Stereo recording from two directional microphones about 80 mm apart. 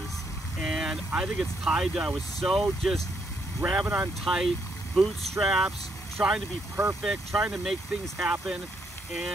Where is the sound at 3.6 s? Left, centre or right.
Centre.